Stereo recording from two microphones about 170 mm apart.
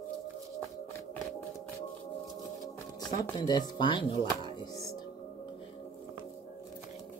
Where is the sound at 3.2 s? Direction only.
25° left (ahead or behind).